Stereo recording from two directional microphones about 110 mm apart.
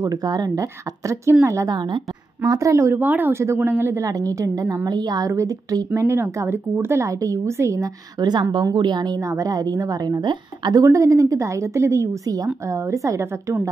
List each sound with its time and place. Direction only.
0.0 s a woman's voice: 35° right (ahead or behind)
1.8 s a woman's voice: 45° right (ahead or behind); by 13.7 s 25° right (ahead or behind)